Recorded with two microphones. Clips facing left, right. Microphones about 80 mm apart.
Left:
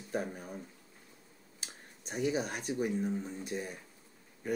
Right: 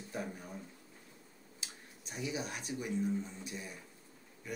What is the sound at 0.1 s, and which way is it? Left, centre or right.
Speech, left.